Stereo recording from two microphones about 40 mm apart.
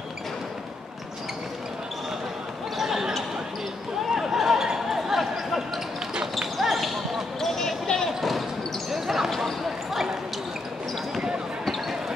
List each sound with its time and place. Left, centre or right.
2.8 s basketball bounce: centre
4.1 s a sound: centre
6.4 s basketball bounce: centre
8.2 s basketball bounce: centre
11.1 s basketball bounce: right
11.6 s basketball bounce: centre